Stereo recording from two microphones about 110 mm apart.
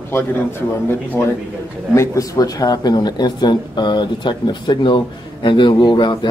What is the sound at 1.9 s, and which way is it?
Speech, 30° left (ahead or behind).